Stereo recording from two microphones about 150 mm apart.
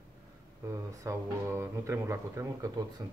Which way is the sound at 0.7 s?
20° right (ahead or behind).